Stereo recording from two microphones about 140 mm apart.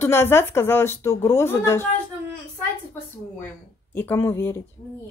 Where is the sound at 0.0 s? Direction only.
15° left (ahead or behind).